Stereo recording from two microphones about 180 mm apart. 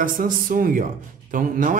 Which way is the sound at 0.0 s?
50° right (ahead or behind).